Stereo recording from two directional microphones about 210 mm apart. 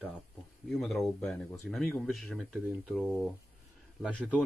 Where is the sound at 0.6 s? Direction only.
Centre (ahead or behind).